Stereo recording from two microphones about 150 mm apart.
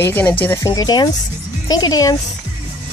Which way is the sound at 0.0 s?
10° left (ahead or behind).